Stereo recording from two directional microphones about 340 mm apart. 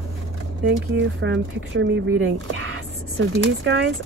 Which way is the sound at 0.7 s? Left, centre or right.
Right.